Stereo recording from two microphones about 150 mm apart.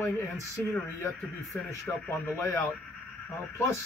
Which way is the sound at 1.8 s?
10° left (ahead or behind).